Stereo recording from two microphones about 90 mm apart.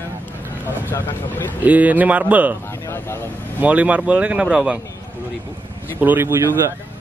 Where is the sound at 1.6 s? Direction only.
20° right (ahead or behind).